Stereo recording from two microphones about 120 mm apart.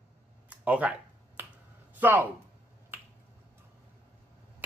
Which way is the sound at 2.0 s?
15° right (ahead or behind).